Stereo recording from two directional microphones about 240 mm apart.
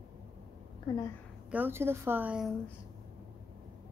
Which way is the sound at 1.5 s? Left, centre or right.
Centre.